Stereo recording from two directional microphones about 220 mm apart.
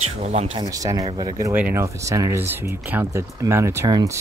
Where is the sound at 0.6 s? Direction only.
15° right (ahead or behind).